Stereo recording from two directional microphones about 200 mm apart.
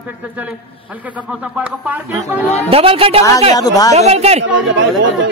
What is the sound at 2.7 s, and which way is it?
Speech, 30° right (ahead or behind).